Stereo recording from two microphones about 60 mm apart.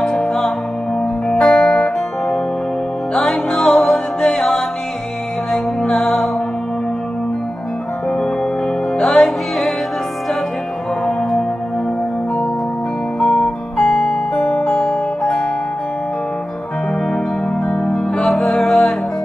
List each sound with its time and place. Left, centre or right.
0.0 s music: centre
9.0 s music: centre
11.1 s singing bowl: centre
13.2 s music: centre
14.3 s music: centre
14.7 s music: centre
17.8 s music: centre